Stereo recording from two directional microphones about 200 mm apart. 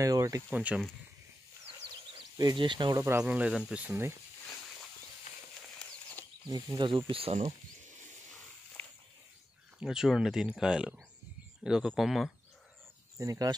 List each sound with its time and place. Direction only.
0.0 s speech: 15° right (ahead or behind)
0.5 s speech: 5° right (ahead or behind)
2.3 s speech: 20° right (ahead or behind)
5.3 s a sound: 35° left (ahead or behind)
5.8 s a sound: 10° left (ahead or behind)
6.5 s speech: 20° right (ahead or behind); by 8.1 s 35° right (ahead or behind)
9.8 s speech: 5° right (ahead or behind)
13.2 s speech: 15° right (ahead or behind)